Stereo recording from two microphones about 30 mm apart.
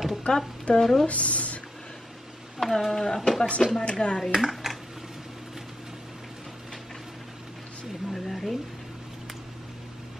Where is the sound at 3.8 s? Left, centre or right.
Left.